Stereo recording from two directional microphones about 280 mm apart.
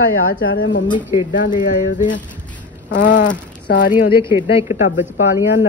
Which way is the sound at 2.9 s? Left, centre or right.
Left.